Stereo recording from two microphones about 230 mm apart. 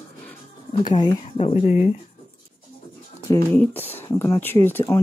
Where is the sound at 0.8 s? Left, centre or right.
Centre.